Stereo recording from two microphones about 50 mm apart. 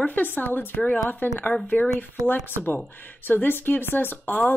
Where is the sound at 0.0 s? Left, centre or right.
Left.